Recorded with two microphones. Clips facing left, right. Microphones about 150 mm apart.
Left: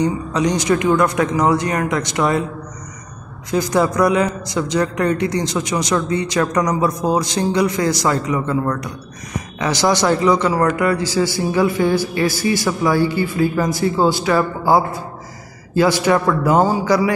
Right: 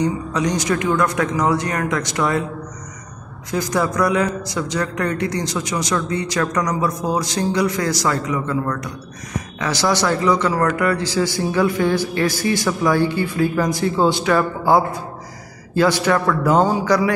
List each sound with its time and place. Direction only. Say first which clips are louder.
0.0 s a man's voice: left 2 dB; 20° left (ahead or behind)
3.5 s a man's voice: left 3 dB; 20° left (ahead or behind)